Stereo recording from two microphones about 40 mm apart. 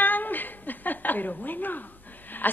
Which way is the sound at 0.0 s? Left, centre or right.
Left.